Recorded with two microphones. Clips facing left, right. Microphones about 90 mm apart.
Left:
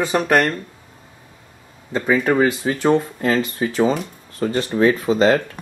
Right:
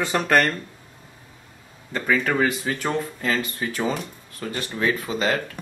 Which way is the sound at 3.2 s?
20° left (ahead or behind).